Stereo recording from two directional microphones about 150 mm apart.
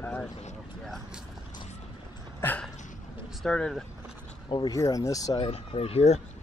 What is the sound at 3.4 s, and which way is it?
Speech, 5° left (ahead or behind).